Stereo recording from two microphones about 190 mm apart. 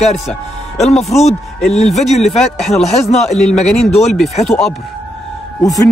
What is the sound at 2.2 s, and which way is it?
Speech, centre (ahead or behind).